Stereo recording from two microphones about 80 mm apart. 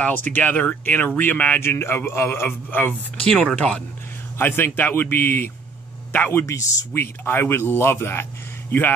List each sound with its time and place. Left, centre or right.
0.0 s speech: left
3.3 s speech: centre
4.4 s speech: left
6.4 s speech: left